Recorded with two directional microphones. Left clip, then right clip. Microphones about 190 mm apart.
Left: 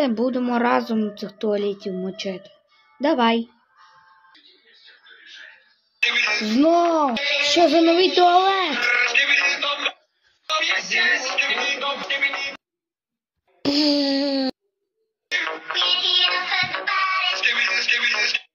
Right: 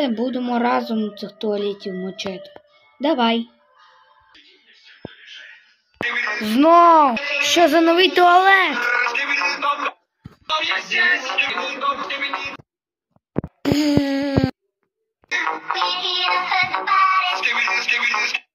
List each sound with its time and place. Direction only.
0.0 s a woman's voice: centre (ahead or behind)
6.0 s speech: 30° right (ahead or behind)
7.1 s music: 35° right (ahead or behind)
7.4 s a woman's voice: centre (ahead or behind)
8.7 s frog: 60° right (ahead or behind)
10.5 s music: 40° right (ahead or behind)
11.5 s music: 65° right (ahead or behind)
12.1 s a sound: 50° right (ahead or behind)
13.6 s music: 5° right (ahead or behind)
15.2 s music: 70° right (ahead or behind)